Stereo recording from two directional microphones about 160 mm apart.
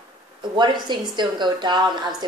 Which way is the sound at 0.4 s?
30° right (ahead or behind).